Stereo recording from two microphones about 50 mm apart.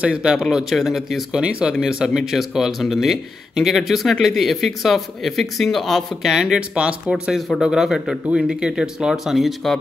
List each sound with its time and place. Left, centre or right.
0.0 s speech: centre
0.7 s speech: centre
1.3 s speech: centre
6.2 s speech: centre
7.3 s speech: centre
7.6 s speech: centre